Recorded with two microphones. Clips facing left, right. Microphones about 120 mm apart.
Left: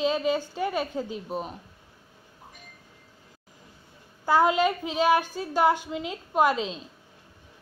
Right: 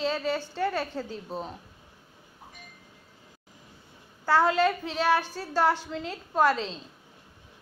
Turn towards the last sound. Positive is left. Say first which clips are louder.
# left 1 dB
turn(degrees=15)  # may be behind; listen again after turning